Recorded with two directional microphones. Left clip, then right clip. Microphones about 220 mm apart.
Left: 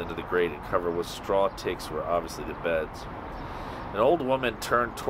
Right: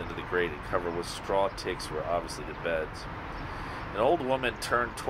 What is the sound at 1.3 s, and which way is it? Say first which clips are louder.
Speech: left 3 dB; 35° left (ahead or behind).